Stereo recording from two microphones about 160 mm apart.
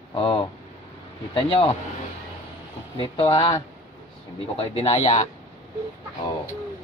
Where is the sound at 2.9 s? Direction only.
35° left (ahead or behind).